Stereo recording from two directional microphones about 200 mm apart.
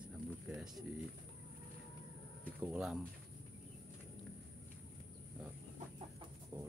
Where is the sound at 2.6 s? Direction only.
5° right (ahead or behind).